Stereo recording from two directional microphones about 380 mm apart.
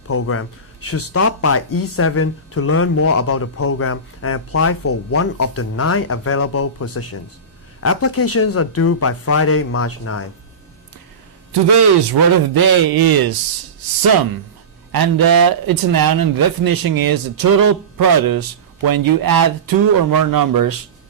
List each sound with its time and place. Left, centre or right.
0.1 s a man's voice: left
1.7 s speech: left
2.0 s a man's voice: left
11.7 s speech: right
14.9 s speech: right